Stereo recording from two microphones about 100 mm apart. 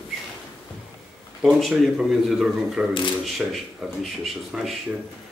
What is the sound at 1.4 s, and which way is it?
Speech, centre (ahead or behind).